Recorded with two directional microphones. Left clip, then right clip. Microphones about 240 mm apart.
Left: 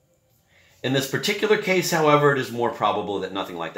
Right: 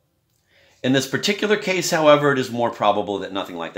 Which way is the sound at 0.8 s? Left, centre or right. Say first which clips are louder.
Right 3 dB; right.